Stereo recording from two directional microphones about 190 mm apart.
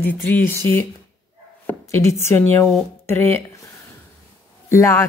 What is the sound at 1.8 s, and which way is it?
Speech, 15° left (ahead or behind).